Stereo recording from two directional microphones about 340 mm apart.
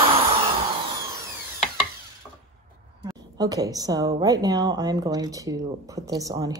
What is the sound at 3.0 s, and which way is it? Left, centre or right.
A woman's voice, centre.